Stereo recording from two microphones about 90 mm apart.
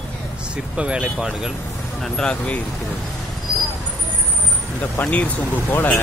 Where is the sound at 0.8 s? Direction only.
10° right (ahead or behind).